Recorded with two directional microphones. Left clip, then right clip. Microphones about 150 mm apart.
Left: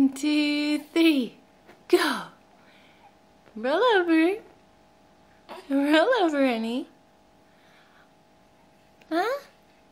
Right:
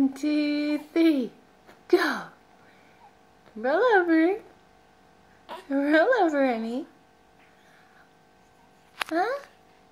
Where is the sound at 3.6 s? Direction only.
10° left (ahead or behind).